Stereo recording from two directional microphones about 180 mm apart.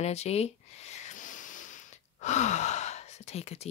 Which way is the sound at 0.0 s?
35° left (ahead or behind).